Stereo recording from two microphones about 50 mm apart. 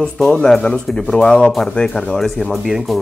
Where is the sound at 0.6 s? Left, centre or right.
Left.